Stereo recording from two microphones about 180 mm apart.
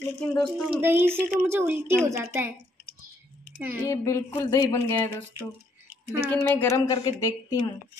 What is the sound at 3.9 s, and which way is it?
A woman's voice, 15° left (ahead or behind).